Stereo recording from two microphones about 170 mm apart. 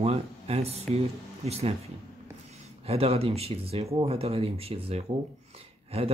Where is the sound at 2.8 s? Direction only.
35° right (ahead or behind).